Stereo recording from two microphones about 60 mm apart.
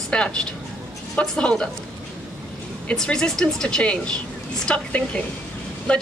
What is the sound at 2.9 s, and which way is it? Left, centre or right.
A woman's voice, centre.